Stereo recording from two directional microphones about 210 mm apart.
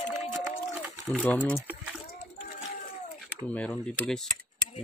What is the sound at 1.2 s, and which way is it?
Speech, 5° left (ahead or behind).